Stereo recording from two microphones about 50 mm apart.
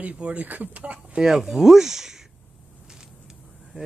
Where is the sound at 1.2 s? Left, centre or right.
Centre.